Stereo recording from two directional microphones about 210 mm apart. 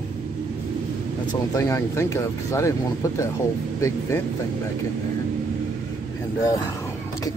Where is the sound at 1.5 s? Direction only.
15° left (ahead or behind).